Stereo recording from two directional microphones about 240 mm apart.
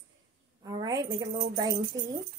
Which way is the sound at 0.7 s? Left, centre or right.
Centre.